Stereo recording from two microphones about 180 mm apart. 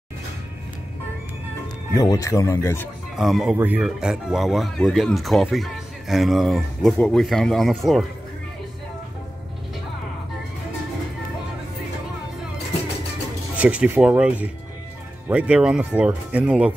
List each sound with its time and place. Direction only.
2.0 s speech: 20° left (ahead or behind)
3.2 s speech: centre (ahead or behind)
13.6 s speech: 5° right (ahead or behind)